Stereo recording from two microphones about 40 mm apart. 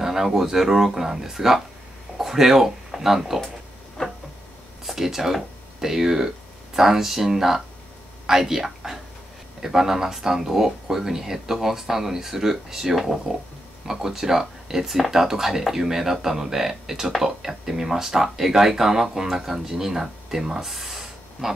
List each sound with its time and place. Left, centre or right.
0.0 s speech: centre
4.0 s a sound: left
4.8 s speech: centre